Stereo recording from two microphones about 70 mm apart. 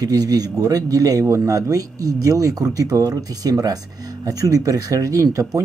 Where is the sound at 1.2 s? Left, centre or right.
Right.